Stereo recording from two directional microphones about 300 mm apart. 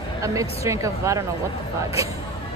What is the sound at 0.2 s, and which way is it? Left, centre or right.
A woman's voice, centre.